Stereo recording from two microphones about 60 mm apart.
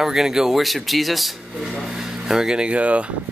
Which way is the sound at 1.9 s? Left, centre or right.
Centre.